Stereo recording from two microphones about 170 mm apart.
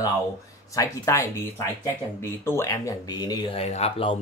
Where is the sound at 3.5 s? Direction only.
40° left (ahead or behind).